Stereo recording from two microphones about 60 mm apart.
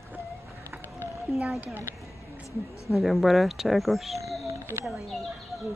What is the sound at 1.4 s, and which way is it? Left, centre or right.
Speech, centre.